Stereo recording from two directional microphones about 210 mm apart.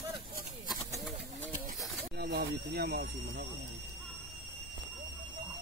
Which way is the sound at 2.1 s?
50° right (ahead or behind).